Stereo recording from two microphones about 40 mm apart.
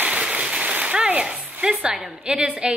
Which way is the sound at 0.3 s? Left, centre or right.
Right.